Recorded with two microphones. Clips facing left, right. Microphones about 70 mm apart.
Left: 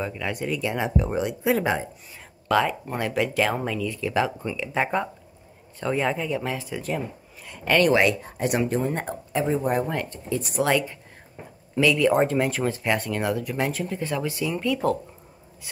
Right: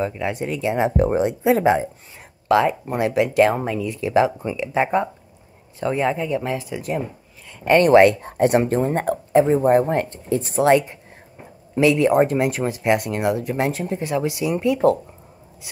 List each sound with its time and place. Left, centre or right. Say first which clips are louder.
0.0 s speech: right 5 dB; right
2.4 s speech: right 5 dB; centre
3.4 s speech: right 5 dB; right; by 7.0 s centre
7.6 s speech: right 5 dB; right
7.9 s speech: right 8 dB; right
12.3 s speech: right 3 dB; centre
13.1 s speech: right 4 dB; right